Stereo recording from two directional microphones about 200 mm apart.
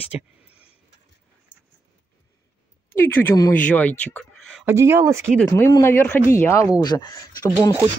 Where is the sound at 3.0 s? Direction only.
15° left (ahead or behind).